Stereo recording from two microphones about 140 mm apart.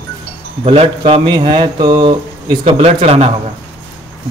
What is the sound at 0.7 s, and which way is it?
Speech, 45° right (ahead or behind).